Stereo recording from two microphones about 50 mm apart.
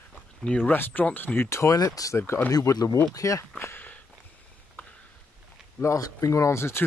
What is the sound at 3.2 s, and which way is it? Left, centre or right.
Speech, left.